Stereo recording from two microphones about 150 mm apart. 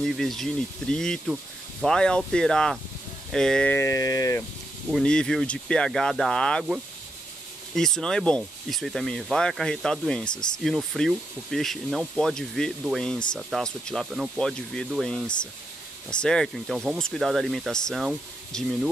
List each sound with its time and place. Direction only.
0.0 s speech: centre (ahead or behind); by 4.5 s 20° left (ahead or behind)
4.9 s speech: 5° left (ahead or behind)